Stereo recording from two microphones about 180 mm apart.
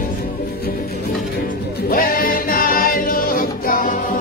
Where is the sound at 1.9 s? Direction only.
50° left (ahead or behind).